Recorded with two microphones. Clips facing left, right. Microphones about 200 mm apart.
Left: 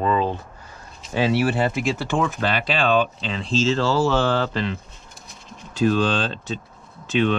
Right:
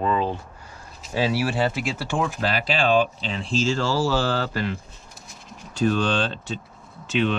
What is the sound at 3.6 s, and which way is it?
Speech, 25° left (ahead or behind).